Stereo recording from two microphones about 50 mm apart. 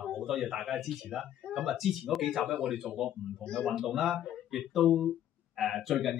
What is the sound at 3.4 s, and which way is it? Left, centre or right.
Speech, centre.